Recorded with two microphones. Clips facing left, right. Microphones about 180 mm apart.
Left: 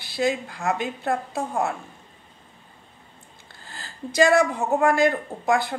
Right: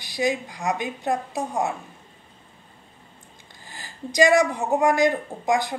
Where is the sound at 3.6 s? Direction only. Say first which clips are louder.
Left 1 dB; 15° right (ahead or behind).